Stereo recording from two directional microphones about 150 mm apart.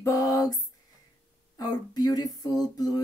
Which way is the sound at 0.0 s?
25° left (ahead or behind).